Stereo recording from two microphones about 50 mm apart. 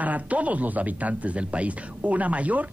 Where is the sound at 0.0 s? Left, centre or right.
Right.